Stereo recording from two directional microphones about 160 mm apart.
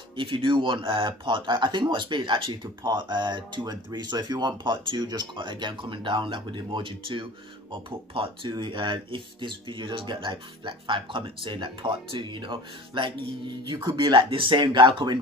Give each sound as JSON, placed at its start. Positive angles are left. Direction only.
{"t": 0.1, "sound": "speech", "side_deg": -30}